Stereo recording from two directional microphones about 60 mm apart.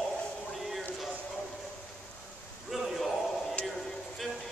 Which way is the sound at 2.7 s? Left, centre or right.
Centre.